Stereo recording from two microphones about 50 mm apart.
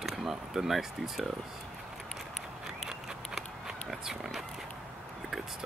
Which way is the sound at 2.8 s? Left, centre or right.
Centre.